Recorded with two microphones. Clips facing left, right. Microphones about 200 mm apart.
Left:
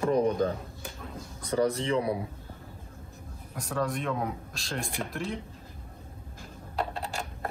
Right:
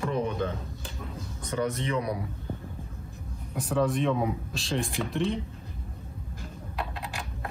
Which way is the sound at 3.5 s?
Centre (ahead or behind).